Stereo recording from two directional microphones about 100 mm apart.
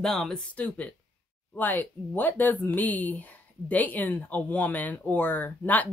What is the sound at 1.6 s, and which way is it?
Speech, 20° left (ahead or behind).